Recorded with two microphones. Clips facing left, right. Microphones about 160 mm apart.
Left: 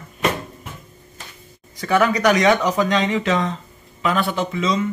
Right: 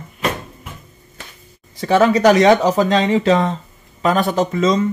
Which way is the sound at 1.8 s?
30° right (ahead or behind).